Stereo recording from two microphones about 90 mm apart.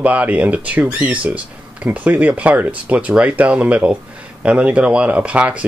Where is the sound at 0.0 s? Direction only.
15° right (ahead or behind).